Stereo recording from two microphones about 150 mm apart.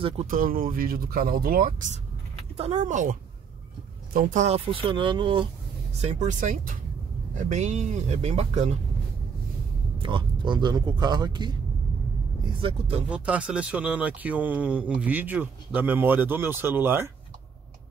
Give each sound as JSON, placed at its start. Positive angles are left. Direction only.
{"t": 0.3, "sound": "speech", "side_deg": -65}
{"t": 2.5, "sound": "speech", "side_deg": -50}
{"t": 5.9, "sound": "speech", "side_deg": -50}
{"t": 9.9, "sound": "speech", "side_deg": -35}
{"t": 13.1, "sound": "speech", "side_deg": -10}